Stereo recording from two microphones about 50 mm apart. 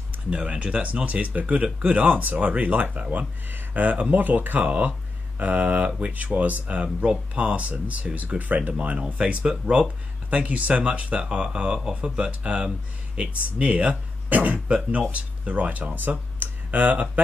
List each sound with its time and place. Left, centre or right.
0.3 s speech: right
10.3 s speech: right